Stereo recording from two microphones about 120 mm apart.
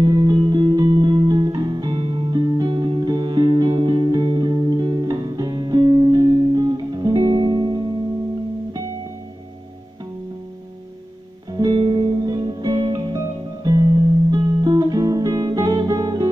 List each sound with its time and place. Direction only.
0.0 s music: 35° right (ahead or behind)
11.5 s music: 35° right (ahead or behind)
14.3 s music: 35° right (ahead or behind)